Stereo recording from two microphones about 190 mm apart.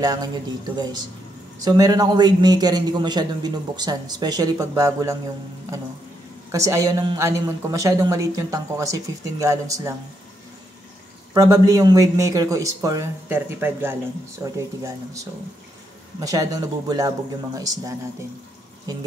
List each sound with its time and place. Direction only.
0.0 s a man's voice: 20° right (ahead or behind)
6.5 s a woman's voice: 15° right (ahead or behind)
11.3 s a woman's voice: 15° right (ahead or behind)